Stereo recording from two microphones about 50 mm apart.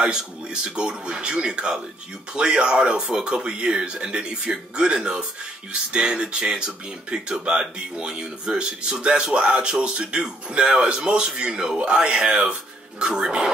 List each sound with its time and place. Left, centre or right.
0.0 s speech: centre